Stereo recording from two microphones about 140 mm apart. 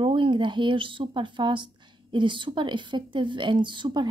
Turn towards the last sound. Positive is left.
turn(degrees=-35)  # may be behind; listen again after turning